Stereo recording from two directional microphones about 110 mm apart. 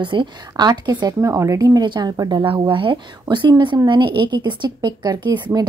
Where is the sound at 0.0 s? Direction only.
45° right (ahead or behind).